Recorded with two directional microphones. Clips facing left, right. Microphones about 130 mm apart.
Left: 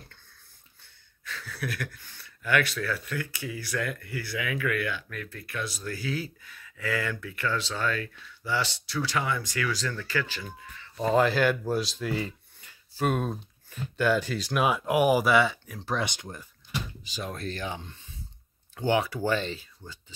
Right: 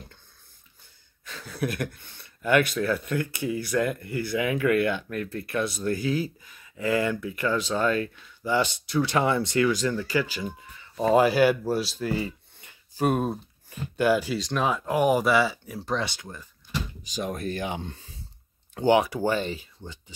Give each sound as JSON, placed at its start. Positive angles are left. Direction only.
{"t": 1.2, "sound": "speech", "side_deg": -20}
{"t": 12.5, "sound": "a sound", "side_deg": -20}
{"t": 13.0, "sound": "speech", "side_deg": -10}
{"t": 14.4, "sound": "speech", "side_deg": 10}
{"t": 16.0, "sound": "speech", "side_deg": 15}
{"t": 17.2, "sound": "speech", "side_deg": -15}
{"t": 18.9, "sound": "speech", "side_deg": -15}